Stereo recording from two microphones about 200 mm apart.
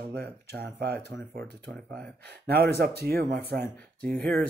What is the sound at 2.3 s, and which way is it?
Speech, 50° right (ahead or behind).